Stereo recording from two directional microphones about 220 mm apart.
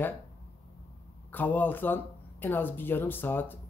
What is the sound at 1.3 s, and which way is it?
Speech, 10° left (ahead or behind).